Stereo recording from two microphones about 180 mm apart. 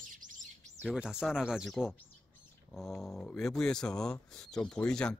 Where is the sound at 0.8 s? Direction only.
Centre (ahead or behind).